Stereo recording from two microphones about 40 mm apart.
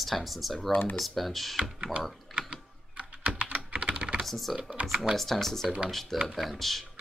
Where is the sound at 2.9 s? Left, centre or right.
Right.